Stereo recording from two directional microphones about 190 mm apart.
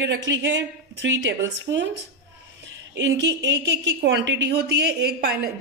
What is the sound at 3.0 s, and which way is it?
Speech, 70° right (ahead or behind).